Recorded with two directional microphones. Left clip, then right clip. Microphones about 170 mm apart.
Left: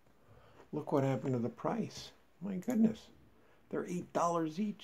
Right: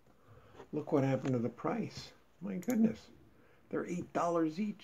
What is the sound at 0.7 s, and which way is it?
Speech, 40° left (ahead or behind).